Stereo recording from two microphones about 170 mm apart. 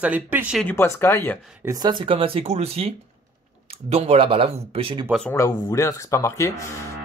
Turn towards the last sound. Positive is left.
turn(degrees=15)  # may be behind; listen again after turning